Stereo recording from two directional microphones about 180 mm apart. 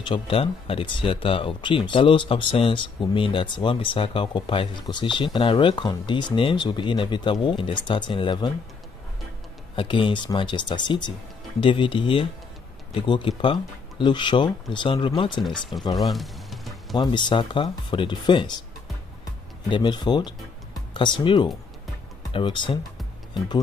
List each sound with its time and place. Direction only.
0.0 s speech: 30° left (ahead or behind)
9.8 s speech: 25° left (ahead or behind)
15.4 s speech: centre (ahead or behind)
16.0 s music: centre (ahead or behind)
16.9 s speech: 25° left (ahead or behind)
19.7 s speech: 25° left (ahead or behind)